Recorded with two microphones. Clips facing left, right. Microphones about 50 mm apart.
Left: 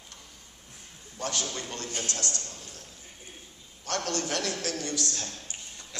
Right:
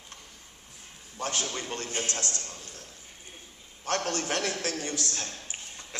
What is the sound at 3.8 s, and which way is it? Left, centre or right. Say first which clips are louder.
A man's voice: right 1 dB; right.